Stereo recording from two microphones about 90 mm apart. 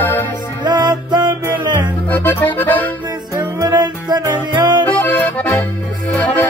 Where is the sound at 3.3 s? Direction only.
40° right (ahead or behind).